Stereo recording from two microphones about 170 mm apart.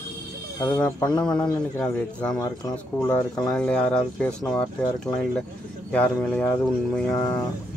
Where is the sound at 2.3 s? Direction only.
25° left (ahead or behind).